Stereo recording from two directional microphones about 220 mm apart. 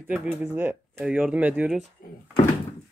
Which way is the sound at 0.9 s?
Centre (ahead or behind).